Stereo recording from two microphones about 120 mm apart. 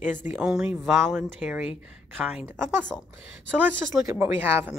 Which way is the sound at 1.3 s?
10° right (ahead or behind).